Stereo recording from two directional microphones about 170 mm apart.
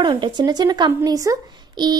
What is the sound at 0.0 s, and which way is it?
A woman's voice, 25° right (ahead or behind).